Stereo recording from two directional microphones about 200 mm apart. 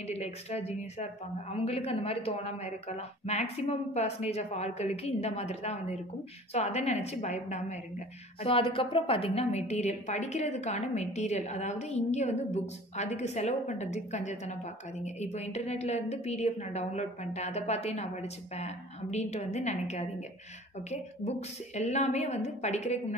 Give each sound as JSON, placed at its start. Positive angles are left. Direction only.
{"t": 0.0, "sound": "a woman's voice", "side_deg": 30}